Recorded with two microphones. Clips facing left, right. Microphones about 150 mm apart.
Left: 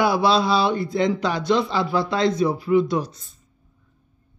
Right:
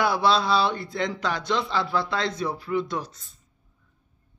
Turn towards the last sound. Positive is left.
turn(degrees=15)  # may be behind; listen again after turning